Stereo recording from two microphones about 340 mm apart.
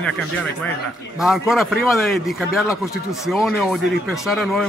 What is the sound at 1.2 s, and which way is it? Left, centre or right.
Speech, centre.